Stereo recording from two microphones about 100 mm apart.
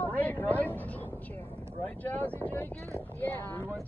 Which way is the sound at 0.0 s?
15° left (ahead or behind).